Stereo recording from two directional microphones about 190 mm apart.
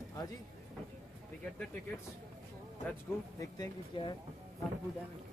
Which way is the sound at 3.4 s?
20° left (ahead or behind).